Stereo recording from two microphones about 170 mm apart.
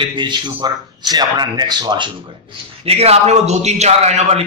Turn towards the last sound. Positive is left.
turn(degrees=-40)  # may be behind; listen again after turning